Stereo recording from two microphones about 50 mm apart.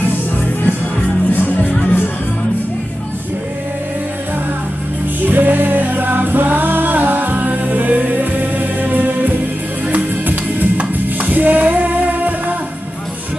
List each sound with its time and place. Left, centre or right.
1.3 s music: left
5.2 s music: right